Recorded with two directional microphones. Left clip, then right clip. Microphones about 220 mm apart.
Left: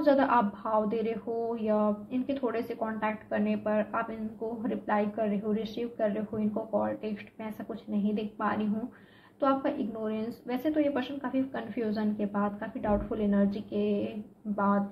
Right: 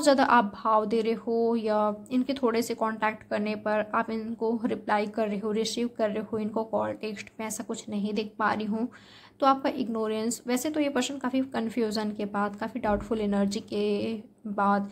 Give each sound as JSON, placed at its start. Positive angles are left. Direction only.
{"t": 0.0, "sound": "a woman's voice", "side_deg": -40}